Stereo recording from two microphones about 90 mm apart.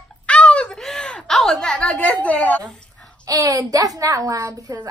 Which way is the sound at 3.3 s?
40° right (ahead or behind).